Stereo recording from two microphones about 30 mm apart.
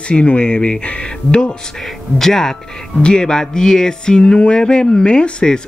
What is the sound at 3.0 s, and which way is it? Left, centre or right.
Speech, left.